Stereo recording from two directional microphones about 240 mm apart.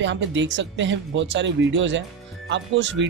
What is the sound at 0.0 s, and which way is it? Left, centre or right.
Speech, right.